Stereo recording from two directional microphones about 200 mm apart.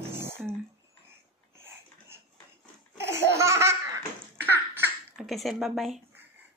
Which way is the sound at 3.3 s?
15° right (ahead or behind).